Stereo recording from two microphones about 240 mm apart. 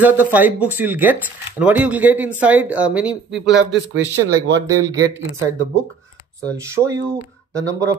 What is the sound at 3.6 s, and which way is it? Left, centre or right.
Speech, right.